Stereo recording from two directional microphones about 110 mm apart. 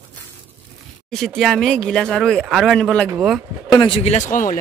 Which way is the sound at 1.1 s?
Centre (ahead or behind).